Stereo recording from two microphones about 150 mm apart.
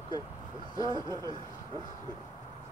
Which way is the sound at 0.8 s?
30° right (ahead or behind).